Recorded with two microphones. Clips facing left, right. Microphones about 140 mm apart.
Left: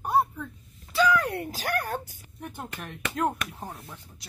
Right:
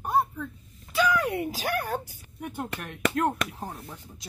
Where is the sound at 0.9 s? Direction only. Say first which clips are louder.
Left 1 dB; 15° right (ahead or behind).